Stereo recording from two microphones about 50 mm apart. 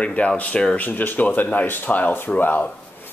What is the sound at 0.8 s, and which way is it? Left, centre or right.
Speech, left.